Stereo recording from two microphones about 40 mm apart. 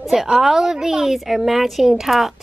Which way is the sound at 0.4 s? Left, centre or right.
Centre.